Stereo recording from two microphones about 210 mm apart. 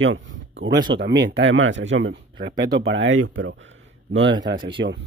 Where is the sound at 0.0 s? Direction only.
65° right (ahead or behind).